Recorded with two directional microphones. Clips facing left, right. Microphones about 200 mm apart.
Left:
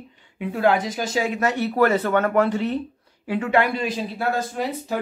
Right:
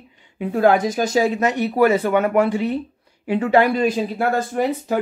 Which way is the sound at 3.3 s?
35° right (ahead or behind).